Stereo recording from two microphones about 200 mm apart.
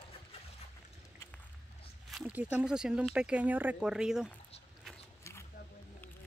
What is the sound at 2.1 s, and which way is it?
Speech, 5° right (ahead or behind).